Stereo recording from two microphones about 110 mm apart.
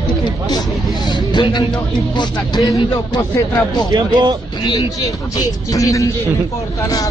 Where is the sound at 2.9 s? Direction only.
35° left (ahead or behind).